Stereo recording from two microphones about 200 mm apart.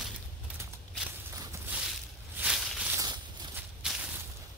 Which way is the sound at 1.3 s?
15° right (ahead or behind).